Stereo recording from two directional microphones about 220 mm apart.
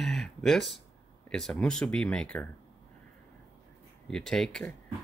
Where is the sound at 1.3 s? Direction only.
Centre (ahead or behind).